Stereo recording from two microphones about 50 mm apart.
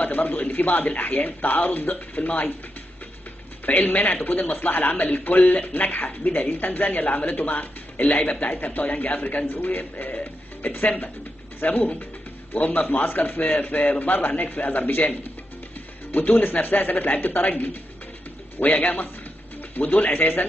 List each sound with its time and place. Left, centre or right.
0.0 s speech: left
3.6 s speech: left
16.1 s speech: left